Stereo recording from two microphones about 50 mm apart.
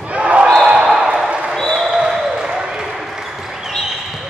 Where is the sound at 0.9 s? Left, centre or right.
Centre.